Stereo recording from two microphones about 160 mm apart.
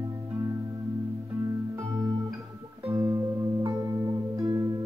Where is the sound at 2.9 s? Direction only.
20° right (ahead or behind).